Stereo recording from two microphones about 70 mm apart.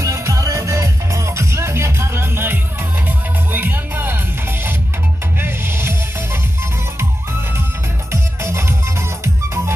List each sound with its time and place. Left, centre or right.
0.0 s music: right
5.4 s music: right
8.1 s music: right